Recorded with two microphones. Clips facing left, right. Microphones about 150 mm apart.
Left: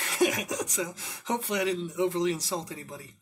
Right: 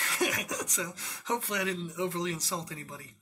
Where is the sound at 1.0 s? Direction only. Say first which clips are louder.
Left 2 dB; 15° left (ahead or behind).